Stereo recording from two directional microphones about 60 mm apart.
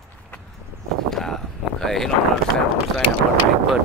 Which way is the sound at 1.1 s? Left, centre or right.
Centre.